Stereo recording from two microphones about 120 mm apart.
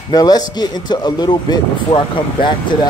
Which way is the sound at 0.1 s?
35° left (ahead or behind).